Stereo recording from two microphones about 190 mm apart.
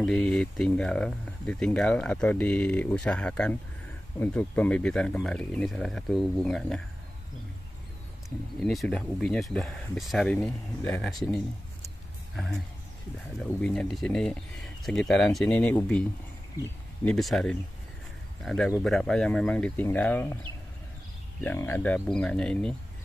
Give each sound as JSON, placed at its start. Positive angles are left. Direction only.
{"t": 0.0, "sound": "speech", "side_deg": 0}
{"t": 8.5, "sound": "speech", "side_deg": 5}
{"t": 13.4, "sound": "speech", "side_deg": 5}
{"t": 21.4, "sound": "speech", "side_deg": 10}